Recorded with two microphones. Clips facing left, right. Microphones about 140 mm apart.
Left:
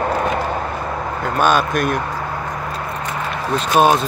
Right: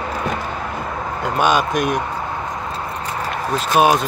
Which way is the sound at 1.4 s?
15° right (ahead or behind).